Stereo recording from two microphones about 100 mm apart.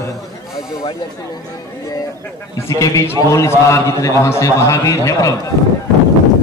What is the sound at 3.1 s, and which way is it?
A man's voice, 30° left (ahead or behind).